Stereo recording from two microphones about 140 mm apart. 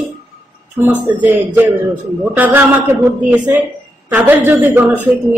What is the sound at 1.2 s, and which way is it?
A man's voice, 10° right (ahead or behind).